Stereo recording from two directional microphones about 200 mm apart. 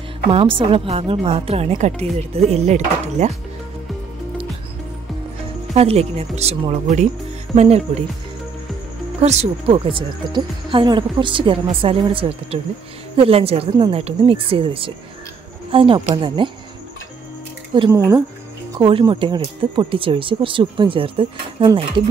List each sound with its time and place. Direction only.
0.3 s speech: 25° right (ahead or behind)
5.8 s speech: 30° right (ahead or behind)
9.2 s speech: 35° right (ahead or behind)
17.7 s speech: 20° right (ahead or behind)
18.7 s speech: 25° right (ahead or behind)